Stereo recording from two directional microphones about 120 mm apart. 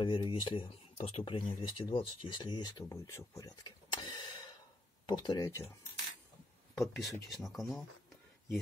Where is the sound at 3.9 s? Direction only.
40° left (ahead or behind).